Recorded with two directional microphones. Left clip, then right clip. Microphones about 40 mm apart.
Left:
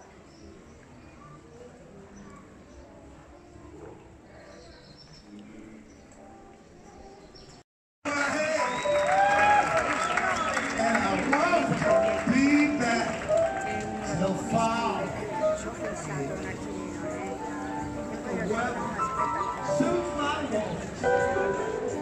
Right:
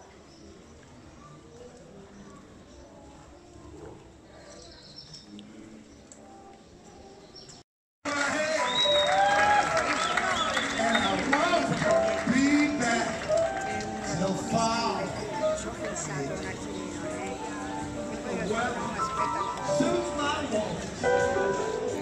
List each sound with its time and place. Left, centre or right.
8.0 s a sound: centre
8.4 s music: centre
19.2 s music: centre
19.6 s music: centre
19.9 s music: centre